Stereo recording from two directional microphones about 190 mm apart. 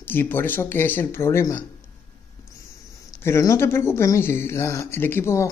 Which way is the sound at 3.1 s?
15° left (ahead or behind).